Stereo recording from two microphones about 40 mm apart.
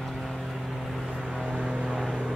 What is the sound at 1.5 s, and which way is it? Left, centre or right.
Vehicle, centre.